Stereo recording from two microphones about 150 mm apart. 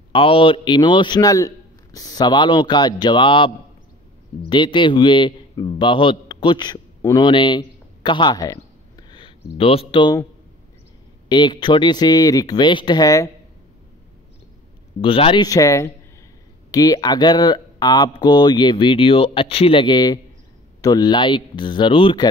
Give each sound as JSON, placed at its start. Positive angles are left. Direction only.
{"t": 0.1, "sound": "a man's voice", "side_deg": 35}
{"t": 7.0, "sound": "speech", "side_deg": 20}
{"t": 7.2, "sound": "a man's voice", "side_deg": 30}
{"t": 11.2, "sound": "speech", "side_deg": 30}
{"t": 15.0, "sound": "a man's voice", "side_deg": 35}
{"t": 15.4, "sound": "a man's voice", "side_deg": 20}